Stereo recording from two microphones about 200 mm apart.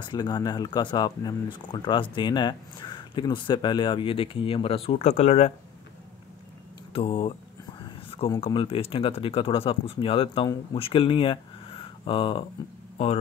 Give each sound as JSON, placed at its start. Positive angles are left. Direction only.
{"t": 0.0, "sound": "speech", "side_deg": 20}
{"t": 6.9, "sound": "speech", "side_deg": 30}
{"t": 7.8, "sound": "a sound", "side_deg": 25}
{"t": 8.4, "sound": "speech", "side_deg": 25}